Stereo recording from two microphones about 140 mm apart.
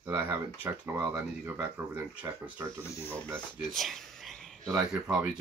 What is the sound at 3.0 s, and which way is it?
Speech, 15° right (ahead or behind).